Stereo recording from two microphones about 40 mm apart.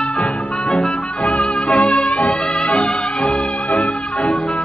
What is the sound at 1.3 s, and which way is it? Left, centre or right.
Music, left.